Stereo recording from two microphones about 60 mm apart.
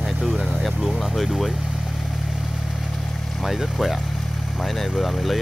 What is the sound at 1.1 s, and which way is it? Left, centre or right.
Vehicle, centre.